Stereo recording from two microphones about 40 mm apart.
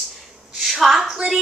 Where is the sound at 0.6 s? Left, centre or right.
Centre.